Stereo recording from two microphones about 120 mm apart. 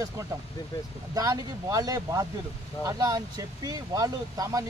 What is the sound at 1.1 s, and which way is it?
Speech, 30° right (ahead or behind).